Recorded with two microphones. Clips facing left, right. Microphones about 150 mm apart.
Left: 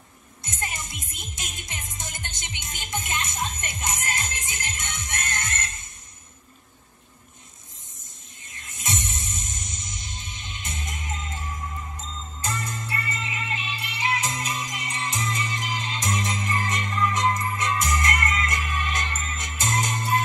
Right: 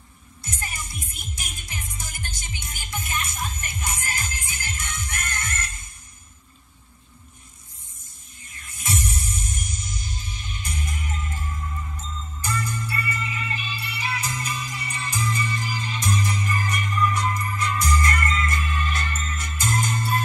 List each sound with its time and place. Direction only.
0.4 s music: 20° left (ahead or behind)
8.5 s music: 20° left (ahead or behind)